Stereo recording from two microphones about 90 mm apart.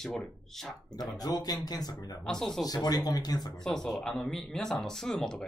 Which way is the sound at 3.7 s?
5° left (ahead or behind).